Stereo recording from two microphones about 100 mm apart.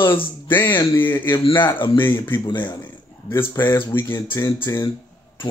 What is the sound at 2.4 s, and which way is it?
Speech, 45° left (ahead or behind).